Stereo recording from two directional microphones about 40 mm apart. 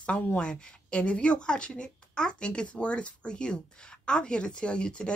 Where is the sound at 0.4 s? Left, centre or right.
Left.